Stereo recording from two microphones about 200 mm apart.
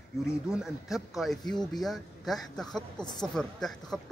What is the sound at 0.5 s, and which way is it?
Speech, centre (ahead or behind).